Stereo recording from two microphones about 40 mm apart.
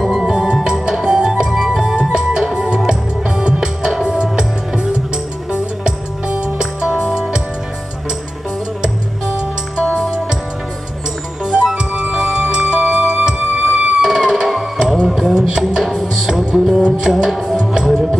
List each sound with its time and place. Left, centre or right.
0.3 s music: centre
11.4 s music: centre
14.0 s music: centre
15.8 s music: centre
16.1 s music: centre